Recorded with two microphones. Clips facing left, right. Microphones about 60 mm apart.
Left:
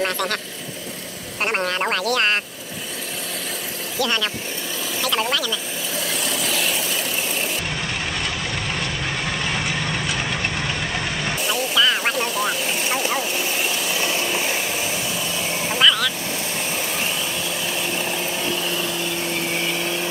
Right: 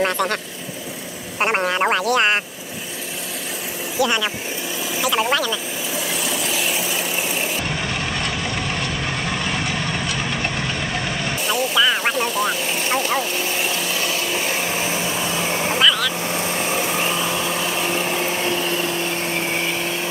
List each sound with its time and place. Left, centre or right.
0.0 s speech: centre
1.4 s speech: centre
4.0 s speech: centre
5.9 s vehicle: centre
11.4 s speech: centre
14.2 s vacuum cleaner: centre
14.7 s vacuum cleaner: centre
15.0 s vacuum cleaner: right
15.8 s vehicle: centre
16.3 s vehicle: right
16.7 s vehicle: right
17.2 s vehicle: right
17.7 s a sound: right
18.4 s vehicle: right; by 20.1 s centre